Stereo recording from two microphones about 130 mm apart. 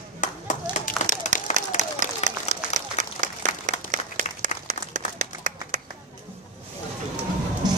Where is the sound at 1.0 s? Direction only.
70° left (ahead or behind).